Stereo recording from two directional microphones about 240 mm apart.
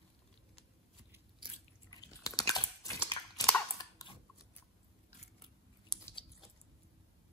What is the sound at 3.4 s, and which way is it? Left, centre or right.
Chewing, centre.